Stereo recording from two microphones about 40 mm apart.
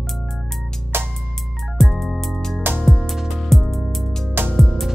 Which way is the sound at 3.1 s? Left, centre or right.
Centre.